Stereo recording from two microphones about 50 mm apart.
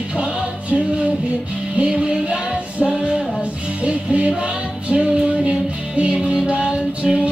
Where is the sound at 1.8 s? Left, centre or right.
Centre.